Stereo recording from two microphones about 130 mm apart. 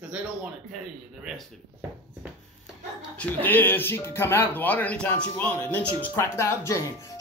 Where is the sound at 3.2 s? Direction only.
15° left (ahead or behind).